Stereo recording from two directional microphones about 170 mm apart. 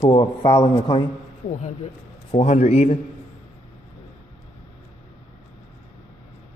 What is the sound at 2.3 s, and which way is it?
Speech, 40° left (ahead or behind).